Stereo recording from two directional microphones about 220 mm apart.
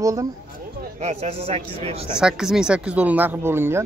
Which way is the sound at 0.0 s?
15° right (ahead or behind).